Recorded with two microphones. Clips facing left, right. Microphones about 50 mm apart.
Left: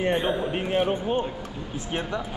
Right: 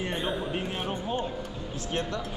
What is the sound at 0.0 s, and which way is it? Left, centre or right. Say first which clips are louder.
A man's voice: left 6 dB; left.